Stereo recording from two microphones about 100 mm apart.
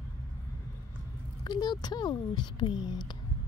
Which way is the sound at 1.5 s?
45° left (ahead or behind).